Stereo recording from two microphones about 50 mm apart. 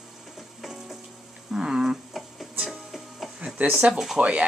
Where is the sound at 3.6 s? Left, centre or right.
Right.